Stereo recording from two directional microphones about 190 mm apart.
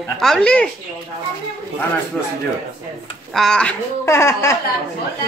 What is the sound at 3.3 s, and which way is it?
Speech, centre (ahead or behind).